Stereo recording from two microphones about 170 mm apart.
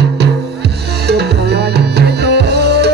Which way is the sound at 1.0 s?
75° right (ahead or behind).